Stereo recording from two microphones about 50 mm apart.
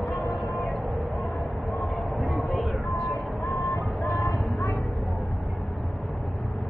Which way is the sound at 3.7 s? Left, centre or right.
Left.